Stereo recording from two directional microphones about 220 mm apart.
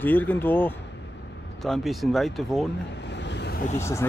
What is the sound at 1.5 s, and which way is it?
Speech, centre (ahead or behind).